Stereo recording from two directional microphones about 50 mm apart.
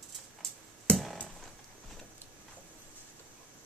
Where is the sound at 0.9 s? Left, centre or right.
Left.